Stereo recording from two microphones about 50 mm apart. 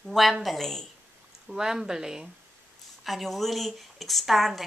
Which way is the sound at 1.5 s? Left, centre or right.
Centre.